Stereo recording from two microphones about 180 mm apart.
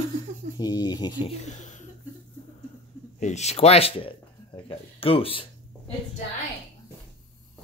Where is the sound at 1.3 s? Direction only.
40° left (ahead or behind).